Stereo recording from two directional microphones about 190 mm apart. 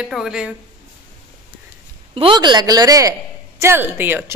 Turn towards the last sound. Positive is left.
turn(degrees=-10)  # may be behind; listen again after turning